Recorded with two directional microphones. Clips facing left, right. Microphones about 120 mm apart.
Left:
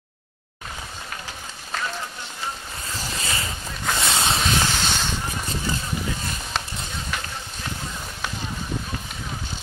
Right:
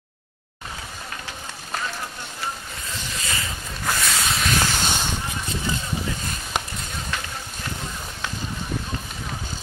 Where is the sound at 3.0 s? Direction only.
35° left (ahead or behind).